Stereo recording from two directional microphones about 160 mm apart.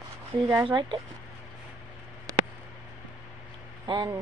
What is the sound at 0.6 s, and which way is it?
Speech, 30° right (ahead or behind).